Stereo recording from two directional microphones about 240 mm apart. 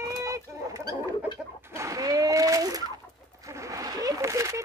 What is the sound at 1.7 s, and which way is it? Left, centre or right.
A child's voice, centre.